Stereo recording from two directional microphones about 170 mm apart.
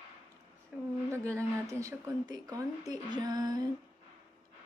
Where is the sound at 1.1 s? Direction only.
15° right (ahead or behind).